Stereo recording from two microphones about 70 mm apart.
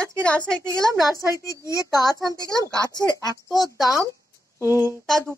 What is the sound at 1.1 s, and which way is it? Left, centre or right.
Speech, left.